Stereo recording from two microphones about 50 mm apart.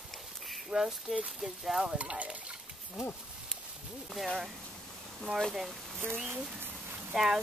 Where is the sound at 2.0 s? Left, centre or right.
Right.